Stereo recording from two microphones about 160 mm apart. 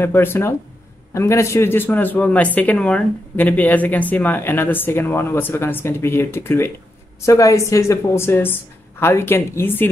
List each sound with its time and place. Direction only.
0.0 s speech: 15° left (ahead or behind)